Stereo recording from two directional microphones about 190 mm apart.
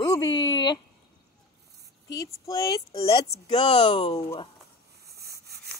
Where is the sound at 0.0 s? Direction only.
20° left (ahead or behind).